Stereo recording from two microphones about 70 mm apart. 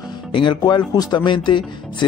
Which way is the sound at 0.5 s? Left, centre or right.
Left.